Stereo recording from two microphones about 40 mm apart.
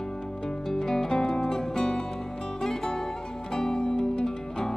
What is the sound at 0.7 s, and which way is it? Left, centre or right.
Music, centre.